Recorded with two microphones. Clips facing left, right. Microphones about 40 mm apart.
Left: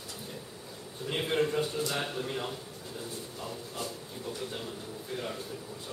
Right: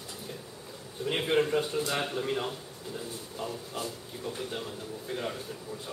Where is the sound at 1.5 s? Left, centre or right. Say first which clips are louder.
Right 2 dB; right.